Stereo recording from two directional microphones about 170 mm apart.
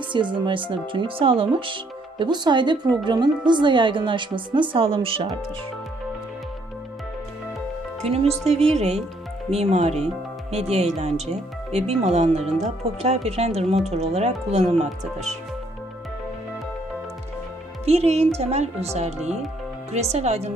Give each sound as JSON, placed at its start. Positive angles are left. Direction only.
{"t": 0.1, "sound": "speech", "side_deg": -30}
{"t": 8.0, "sound": "speech", "side_deg": -35}
{"t": 17.8, "sound": "speech", "side_deg": -40}